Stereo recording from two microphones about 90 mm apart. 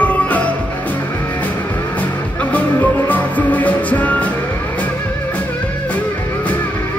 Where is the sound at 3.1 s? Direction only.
15° left (ahead or behind).